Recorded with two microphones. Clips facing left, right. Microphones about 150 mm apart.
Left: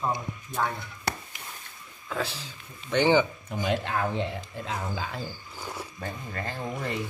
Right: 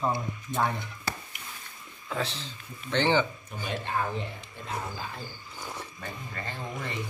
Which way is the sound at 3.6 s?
90° left.